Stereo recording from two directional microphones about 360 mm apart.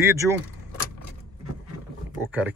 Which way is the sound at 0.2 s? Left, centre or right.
Centre.